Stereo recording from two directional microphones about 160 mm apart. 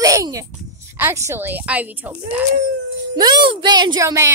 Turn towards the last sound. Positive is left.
turn(degrees=-20)  # may be behind; listen again after turning